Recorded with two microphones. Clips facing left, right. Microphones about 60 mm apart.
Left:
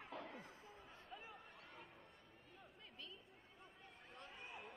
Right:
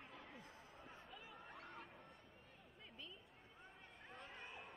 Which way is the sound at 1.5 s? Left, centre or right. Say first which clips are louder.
Right 4 dB; right.